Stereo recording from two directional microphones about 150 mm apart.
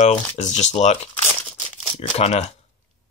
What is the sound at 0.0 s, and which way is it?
Speech, 50° left (ahead or behind).